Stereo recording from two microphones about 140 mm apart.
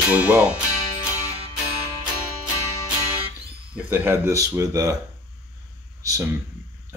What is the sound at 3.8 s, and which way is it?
Speech, 15° right (ahead or behind).